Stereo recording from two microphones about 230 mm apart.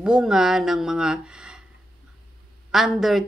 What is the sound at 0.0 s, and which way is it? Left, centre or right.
Speech, centre.